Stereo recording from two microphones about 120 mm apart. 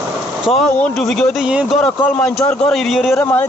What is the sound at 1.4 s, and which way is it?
Speech, 10° right (ahead or behind).